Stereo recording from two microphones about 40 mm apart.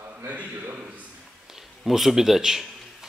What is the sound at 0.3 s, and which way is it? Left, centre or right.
Speech, right.